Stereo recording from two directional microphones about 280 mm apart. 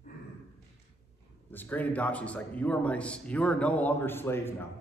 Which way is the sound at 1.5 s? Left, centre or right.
Centre.